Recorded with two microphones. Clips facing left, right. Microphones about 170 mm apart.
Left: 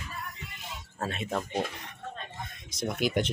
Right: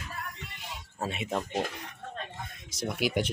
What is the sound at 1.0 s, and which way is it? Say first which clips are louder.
Speech: even; 15° right (ahead or behind).